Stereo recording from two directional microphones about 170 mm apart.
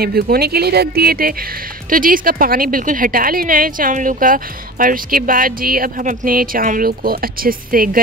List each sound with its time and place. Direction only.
0.0 s a woman's voice: 65° right (ahead or behind)